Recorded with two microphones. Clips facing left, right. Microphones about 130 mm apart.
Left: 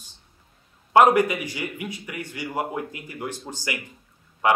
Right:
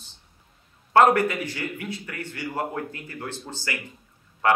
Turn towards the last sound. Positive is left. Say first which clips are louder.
# left 1 dB
turn(degrees=15)  # may be behind; listen again after turning